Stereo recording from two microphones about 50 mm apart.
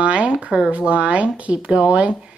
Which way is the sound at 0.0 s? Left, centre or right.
Right.